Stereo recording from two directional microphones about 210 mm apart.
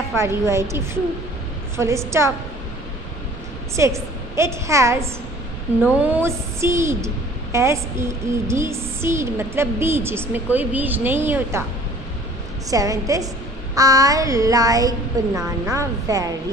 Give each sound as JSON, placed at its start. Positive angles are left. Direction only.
{"t": 0.1, "sound": "a woman's voice", "side_deg": -15}
{"t": 3.7, "sound": "a woman's voice", "side_deg": -15}
{"t": 12.6, "sound": "a woman's voice", "side_deg": -15}